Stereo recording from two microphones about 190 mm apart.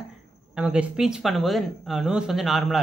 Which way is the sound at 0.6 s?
5° right (ahead or behind).